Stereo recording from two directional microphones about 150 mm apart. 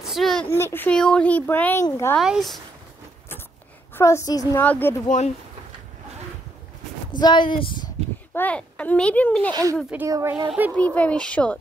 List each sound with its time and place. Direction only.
0.0 s a sound: centre (ahead or behind)
0.5 s speech: 15° left (ahead or behind)
2.1 s speech: centre (ahead or behind)
3.9 s a woman's voice: 20° left (ahead or behind)
5.0 s speech: 50° left (ahead or behind)
7.1 s speech: 30° left (ahead or behind)
8.3 s speech: 10° left (ahead or behind)
9.5 s speech: 25° right (ahead or behind)
9.8 s speech: 10° right (ahead or behind)
10.8 s speech: 10° left (ahead or behind)